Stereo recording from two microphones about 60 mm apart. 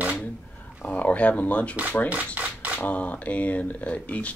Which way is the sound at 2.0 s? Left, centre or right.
Right.